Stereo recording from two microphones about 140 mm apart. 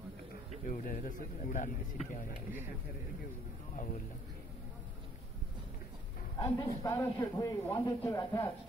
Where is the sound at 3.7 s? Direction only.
65° left (ahead or behind).